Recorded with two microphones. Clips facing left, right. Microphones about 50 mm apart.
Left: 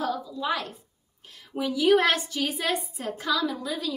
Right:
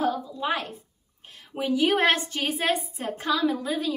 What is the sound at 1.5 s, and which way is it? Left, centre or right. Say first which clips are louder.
A woman's voice: left 2 dB; right.